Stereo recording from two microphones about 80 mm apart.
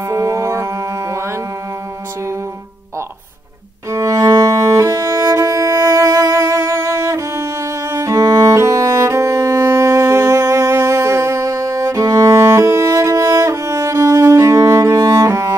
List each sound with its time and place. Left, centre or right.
0.1 s mantra: right
3.9 s music: right